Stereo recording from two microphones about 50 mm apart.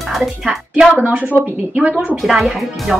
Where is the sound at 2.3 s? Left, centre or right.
Centre.